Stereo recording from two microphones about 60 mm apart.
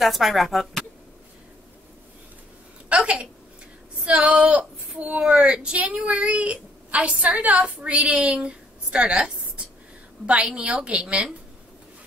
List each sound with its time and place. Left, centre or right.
0.0 s speech: centre
2.9 s a sound: centre
4.0 s a woman's voice: centre